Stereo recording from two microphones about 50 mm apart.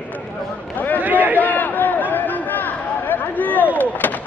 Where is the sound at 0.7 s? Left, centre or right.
Left.